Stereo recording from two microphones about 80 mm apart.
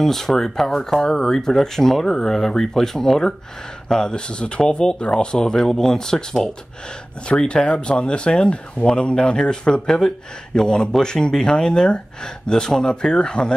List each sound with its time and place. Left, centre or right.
0.0 s speech: centre